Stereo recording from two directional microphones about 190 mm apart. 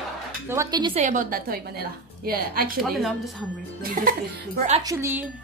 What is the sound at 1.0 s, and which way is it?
Speech, 40° right (ahead or behind).